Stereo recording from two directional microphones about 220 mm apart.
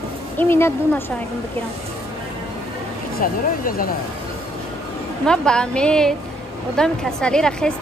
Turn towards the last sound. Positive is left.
turn(degrees=5)  # may be behind; listen again after turning